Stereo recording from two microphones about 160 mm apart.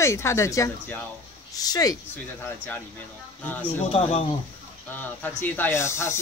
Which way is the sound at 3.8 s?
40° left (ahead or behind).